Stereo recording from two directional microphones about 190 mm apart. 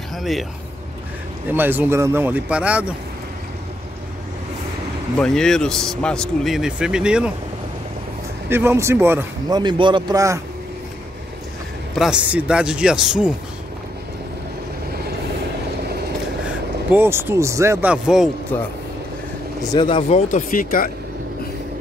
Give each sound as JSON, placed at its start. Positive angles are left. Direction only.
{"t": 0.1, "sound": "speech", "side_deg": 0}
{"t": 1.5, "sound": "speech", "side_deg": -10}
{"t": 5.2, "sound": "speech", "side_deg": 5}
{"t": 8.5, "sound": "speech", "side_deg": -10}
{"t": 9.6, "sound": "a man's voice", "side_deg": -25}
{"t": 11.9, "sound": "speech", "side_deg": -5}
{"t": 16.9, "sound": "speech", "side_deg": -10}
{"t": 18.0, "sound": "speech", "side_deg": -5}
{"t": 18.5, "sound": "speech", "side_deg": 10}
{"t": 19.7, "sound": "speech", "side_deg": 25}
{"t": 20.2, "sound": "speech", "side_deg": 45}